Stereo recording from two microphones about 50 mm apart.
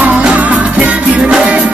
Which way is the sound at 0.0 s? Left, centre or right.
Right.